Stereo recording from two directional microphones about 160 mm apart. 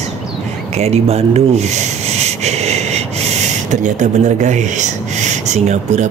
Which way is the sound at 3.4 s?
50° right (ahead or behind).